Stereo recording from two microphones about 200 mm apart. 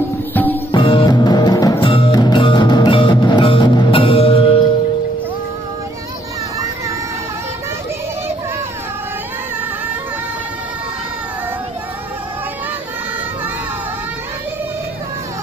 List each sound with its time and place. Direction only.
0.3 s music: 10° left (ahead or behind)
0.7 s music: 25° left (ahead or behind)